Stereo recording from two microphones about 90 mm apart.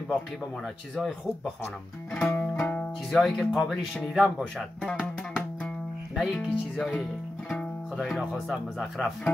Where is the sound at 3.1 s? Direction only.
5° left (ahead or behind).